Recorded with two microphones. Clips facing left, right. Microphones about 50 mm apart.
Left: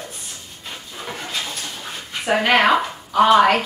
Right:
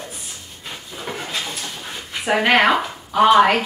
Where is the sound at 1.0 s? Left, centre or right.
Centre.